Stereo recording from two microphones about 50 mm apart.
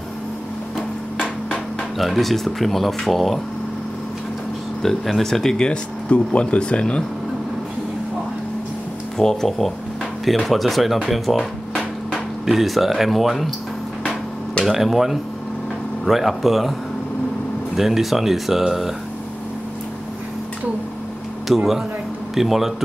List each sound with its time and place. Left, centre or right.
2.0 s speech: centre
4.8 s speech: centre
9.2 s speech: centre
12.4 s speech: centre
14.6 s speech: centre
17.7 s speech: centre
21.5 s speech: centre